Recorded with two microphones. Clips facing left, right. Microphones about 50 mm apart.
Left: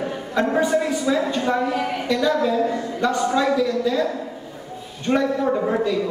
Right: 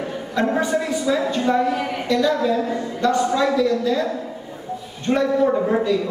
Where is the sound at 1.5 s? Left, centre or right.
Centre.